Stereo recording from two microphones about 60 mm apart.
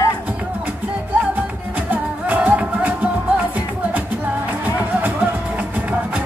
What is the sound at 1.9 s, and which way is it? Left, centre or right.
Music, right.